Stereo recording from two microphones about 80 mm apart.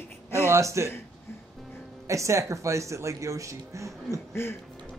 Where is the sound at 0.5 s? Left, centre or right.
Right.